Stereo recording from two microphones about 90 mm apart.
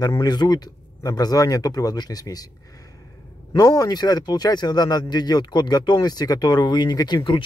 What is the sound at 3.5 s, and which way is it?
Speech, 40° left (ahead or behind).